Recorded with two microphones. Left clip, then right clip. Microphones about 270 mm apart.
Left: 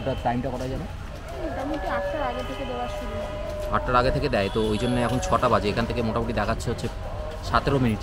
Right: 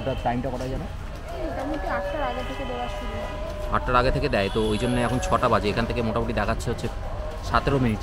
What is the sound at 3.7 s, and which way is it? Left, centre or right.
A man's voice, centre.